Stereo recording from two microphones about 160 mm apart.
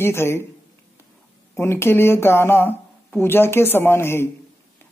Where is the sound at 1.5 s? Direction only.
15° left (ahead or behind).